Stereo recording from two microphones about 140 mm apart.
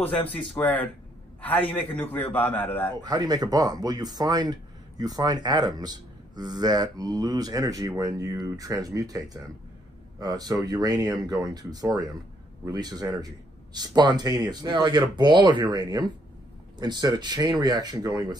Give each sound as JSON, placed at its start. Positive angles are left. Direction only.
{"t": 0.6, "sound": "a man's voice", "side_deg": 10}
{"t": 3.0, "sound": "speech", "side_deg": -30}